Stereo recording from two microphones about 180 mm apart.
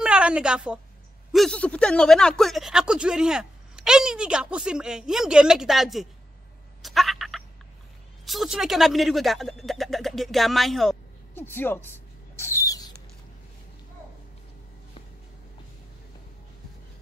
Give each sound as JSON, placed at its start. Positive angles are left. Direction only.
{"t": 0.0, "sound": "a woman's voice", "side_deg": -5}
{"t": 6.8, "sound": "a sound", "side_deg": 0}
{"t": 8.3, "sound": "speech", "side_deg": 0}
{"t": 11.3, "sound": "a woman's voice", "side_deg": 10}
{"t": 12.4, "sound": "rodents", "side_deg": 15}